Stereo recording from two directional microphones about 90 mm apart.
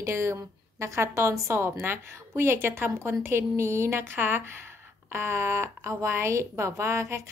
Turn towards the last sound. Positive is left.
turn(degrees=-30)  # may be behind; listen again after turning